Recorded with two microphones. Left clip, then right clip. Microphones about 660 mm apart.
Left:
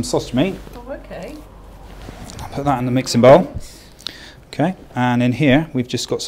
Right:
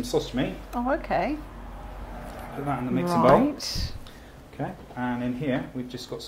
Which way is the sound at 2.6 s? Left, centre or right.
Left.